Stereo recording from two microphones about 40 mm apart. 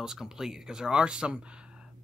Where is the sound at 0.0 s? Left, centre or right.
Centre.